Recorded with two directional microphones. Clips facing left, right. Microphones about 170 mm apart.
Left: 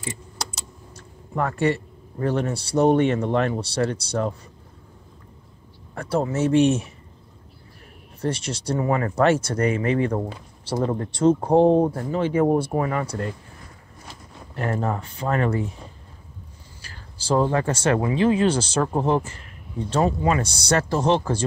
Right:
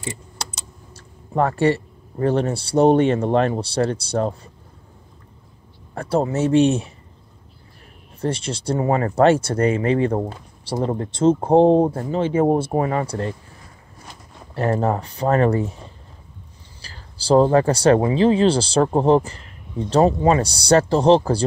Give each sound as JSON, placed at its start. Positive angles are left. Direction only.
{"t": 0.9, "sound": "speech", "side_deg": -35}
{"t": 5.9, "sound": "speech", "side_deg": -30}
{"t": 8.2, "sound": "speech", "side_deg": -30}
{"t": 10.2, "sound": "speech", "side_deg": -15}
{"t": 10.8, "sound": "speech", "side_deg": -25}
{"t": 14.5, "sound": "speech", "side_deg": -35}
{"t": 16.8, "sound": "speech", "side_deg": -35}